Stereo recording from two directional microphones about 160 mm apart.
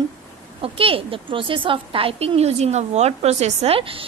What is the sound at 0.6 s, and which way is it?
A woman's voice, 35° right (ahead or behind).